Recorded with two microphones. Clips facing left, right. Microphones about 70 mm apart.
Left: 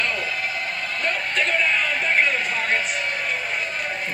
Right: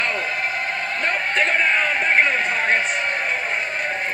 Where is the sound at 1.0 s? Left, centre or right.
Right.